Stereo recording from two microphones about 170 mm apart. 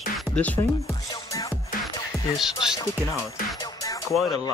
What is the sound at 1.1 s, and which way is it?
Music, 20° left (ahead or behind).